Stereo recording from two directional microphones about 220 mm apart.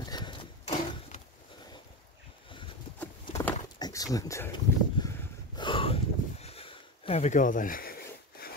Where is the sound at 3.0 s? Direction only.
10° left (ahead or behind).